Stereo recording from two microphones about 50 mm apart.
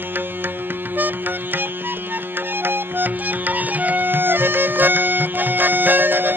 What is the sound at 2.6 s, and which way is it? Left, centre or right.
Music, right.